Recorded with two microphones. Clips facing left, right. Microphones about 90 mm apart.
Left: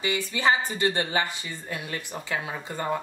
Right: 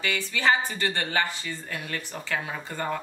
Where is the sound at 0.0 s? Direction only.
20° left (ahead or behind).